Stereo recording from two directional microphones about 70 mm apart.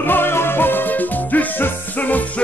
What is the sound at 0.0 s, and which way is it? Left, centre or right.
Music, left.